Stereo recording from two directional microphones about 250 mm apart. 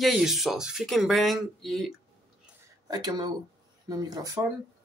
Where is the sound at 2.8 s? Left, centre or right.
Centre.